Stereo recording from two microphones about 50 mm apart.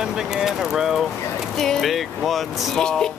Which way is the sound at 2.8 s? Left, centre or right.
Centre.